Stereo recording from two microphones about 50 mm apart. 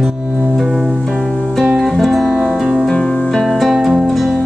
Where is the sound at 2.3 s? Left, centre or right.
Centre.